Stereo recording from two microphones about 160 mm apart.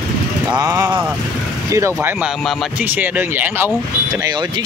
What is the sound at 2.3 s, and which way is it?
Speech, centre (ahead or behind).